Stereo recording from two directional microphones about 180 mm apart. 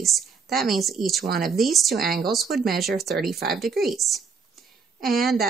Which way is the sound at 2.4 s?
60° right (ahead or behind).